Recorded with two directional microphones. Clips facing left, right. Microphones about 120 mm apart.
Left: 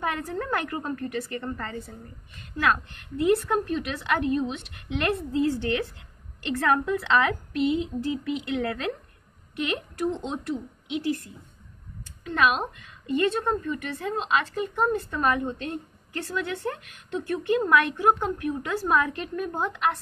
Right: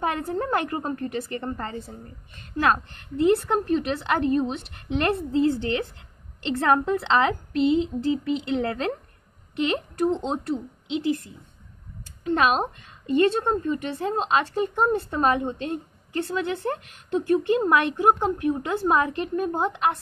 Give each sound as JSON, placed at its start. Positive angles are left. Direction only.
{"t": 0.0, "sound": "a woman's voice", "side_deg": -25}
{"t": 12.3, "sound": "a woman's voice", "side_deg": -30}